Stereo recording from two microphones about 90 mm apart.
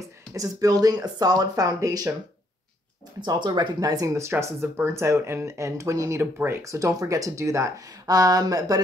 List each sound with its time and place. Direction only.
0.3 s speech: 40° right (ahead or behind)
3.2 s speech: 55° right (ahead or behind)